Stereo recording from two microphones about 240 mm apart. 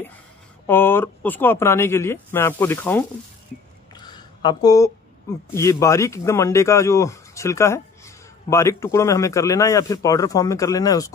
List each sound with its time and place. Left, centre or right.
0.7 s speech: centre
3.9 s a sound: centre
5.5 s speech: centre